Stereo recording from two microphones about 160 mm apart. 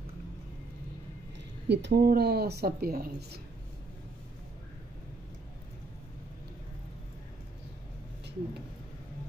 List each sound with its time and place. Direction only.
1.7 s speech: 90° right